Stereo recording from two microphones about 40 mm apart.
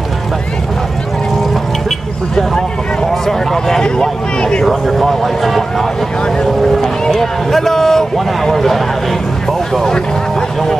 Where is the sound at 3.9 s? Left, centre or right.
Left.